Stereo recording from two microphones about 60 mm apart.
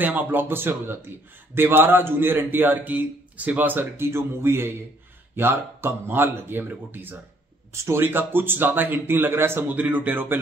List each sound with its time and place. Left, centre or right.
0.0 s a man's voice: right
3.9 s a man's voice: right
7.7 s speech: right
8.0 s a man's voice: right
9.8 s speech: right